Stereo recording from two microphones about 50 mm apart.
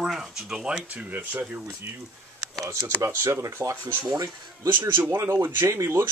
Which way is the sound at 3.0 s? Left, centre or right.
Right.